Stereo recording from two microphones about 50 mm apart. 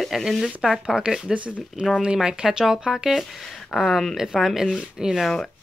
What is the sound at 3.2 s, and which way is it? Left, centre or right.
Speech, centre.